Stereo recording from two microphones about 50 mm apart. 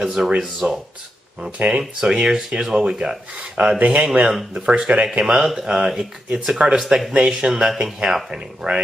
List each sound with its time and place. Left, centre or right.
0.0 s speech: centre
1.6 s speech: right
3.5 s speech: right
5.2 s speech: centre